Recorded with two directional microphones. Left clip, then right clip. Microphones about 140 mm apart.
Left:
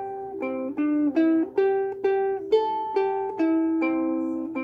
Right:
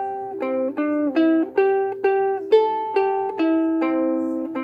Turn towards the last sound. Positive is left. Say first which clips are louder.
# right 4 dB
turn(degrees=-25)  # may be behind; listen again after turning